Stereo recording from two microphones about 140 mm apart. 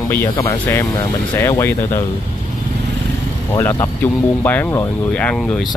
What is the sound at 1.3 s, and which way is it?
Speech, 15° left (ahead or behind).